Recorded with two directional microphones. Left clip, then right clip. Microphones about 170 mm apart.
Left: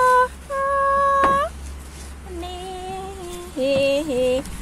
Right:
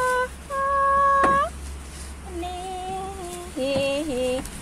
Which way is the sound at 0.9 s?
40° left (ahead or behind).